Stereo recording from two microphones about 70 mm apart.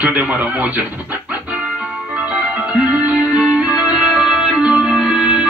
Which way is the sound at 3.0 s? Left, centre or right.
Centre.